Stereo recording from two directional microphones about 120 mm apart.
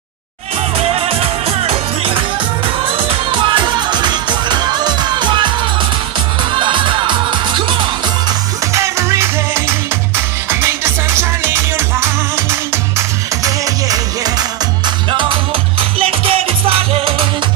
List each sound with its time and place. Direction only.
0.7 s music: 50° right (ahead or behind)
6.5 s music: 45° right (ahead or behind)
8.7 s music: 25° right (ahead or behind)
15.0 s music: 40° right (ahead or behind)
16.0 s music: 55° right (ahead or behind)